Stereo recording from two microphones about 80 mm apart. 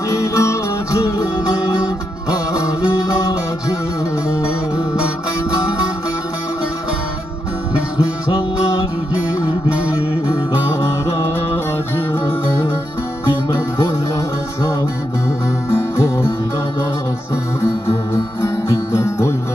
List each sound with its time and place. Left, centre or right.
0.1 s music: left
4.3 s music: left
17.6 s music: left